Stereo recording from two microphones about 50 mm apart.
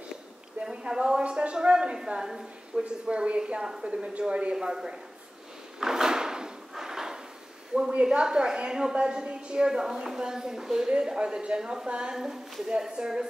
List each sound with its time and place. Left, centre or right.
0.6 s a woman's voice: centre
2.8 s a woman's voice: right
5.8 s drawer open or close: centre
6.7 s a sound: centre
7.9 s a woman's voice: centre